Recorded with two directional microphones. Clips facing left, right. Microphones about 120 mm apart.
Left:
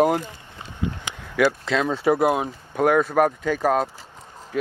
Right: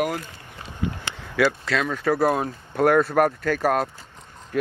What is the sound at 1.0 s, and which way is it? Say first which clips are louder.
Speech: left 1 dB; 15° left (ahead or behind).